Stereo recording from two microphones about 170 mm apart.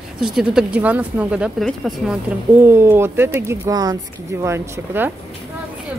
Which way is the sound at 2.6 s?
15° right (ahead or behind).